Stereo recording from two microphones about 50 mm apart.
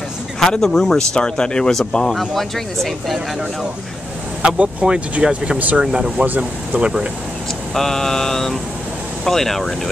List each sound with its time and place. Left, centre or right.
0.4 s speech: centre
4.4 s speech: right
5.6 s speech: right
5.9 s speech: centre
6.2 s speech: right
6.8 s speech: right
7.7 s speech: centre